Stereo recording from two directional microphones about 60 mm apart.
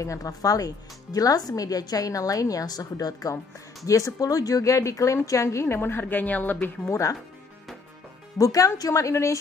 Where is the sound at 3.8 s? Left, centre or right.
Left.